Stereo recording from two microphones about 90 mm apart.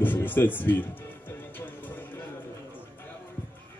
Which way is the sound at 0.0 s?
20° left (ahead or behind).